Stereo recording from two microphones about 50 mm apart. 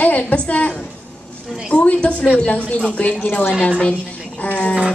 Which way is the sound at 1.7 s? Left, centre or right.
Left.